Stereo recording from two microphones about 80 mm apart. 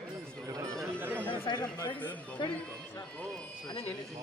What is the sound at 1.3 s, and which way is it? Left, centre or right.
Chatter, left.